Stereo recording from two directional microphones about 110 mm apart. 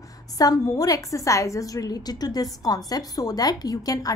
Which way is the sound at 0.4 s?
35° left (ahead or behind).